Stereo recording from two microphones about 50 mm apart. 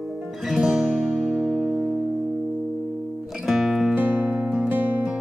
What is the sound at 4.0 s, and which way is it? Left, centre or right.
Music, right.